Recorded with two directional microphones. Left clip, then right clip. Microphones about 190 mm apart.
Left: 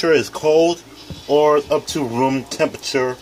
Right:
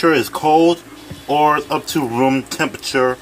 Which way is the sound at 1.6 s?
25° right (ahead or behind).